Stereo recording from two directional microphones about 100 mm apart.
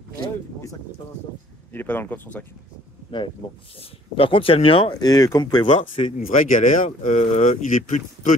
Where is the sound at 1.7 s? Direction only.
20° left (ahead or behind).